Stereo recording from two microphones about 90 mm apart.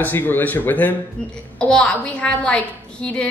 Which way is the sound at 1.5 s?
10° left (ahead or behind).